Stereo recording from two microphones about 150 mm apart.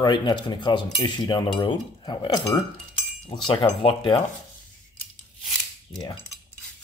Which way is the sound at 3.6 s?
35° left (ahead or behind).